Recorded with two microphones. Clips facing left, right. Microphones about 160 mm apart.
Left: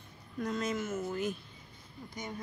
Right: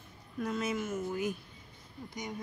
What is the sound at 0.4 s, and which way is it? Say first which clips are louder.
Speech: even; 10° right (ahead or behind).